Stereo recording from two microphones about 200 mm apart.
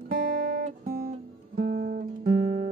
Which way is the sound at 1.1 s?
40° right (ahead or behind).